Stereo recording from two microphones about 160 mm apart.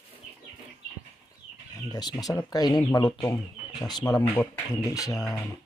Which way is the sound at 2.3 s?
25° left (ahead or behind).